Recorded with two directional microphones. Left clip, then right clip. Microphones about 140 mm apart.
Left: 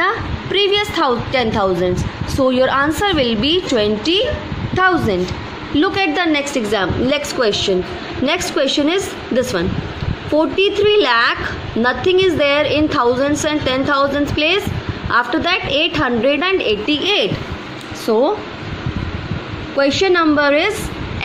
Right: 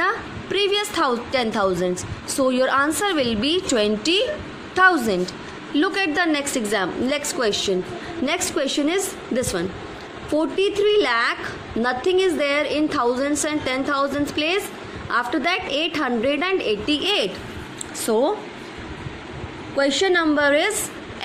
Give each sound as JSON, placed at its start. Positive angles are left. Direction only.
{"t": 0.0, "sound": "a sound", "side_deg": -15}
{"t": 2.3, "sound": "a woman's voice", "side_deg": -15}
{"t": 19.8, "sound": "a woman's voice", "side_deg": -5}